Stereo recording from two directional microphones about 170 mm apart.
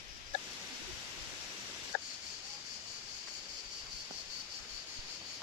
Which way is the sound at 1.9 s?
55° left (ahead or behind).